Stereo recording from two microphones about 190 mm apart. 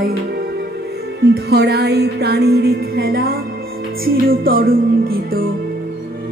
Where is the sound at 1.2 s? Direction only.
60° right (ahead or behind).